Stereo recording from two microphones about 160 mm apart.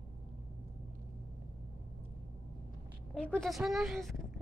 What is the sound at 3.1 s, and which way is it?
Speech, 5° left (ahead or behind).